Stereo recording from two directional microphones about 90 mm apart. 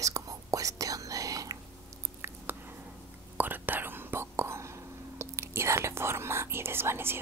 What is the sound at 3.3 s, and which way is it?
Whispering, 20° right (ahead or behind).